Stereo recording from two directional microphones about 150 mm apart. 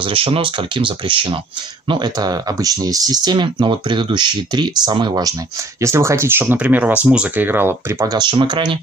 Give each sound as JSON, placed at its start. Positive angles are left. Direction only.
{"t": 0.0, "sound": "speech", "side_deg": -40}
{"t": 5.8, "sound": "speech", "side_deg": -20}